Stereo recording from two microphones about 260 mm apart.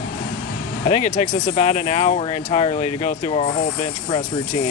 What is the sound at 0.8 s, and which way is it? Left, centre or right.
Speech, left.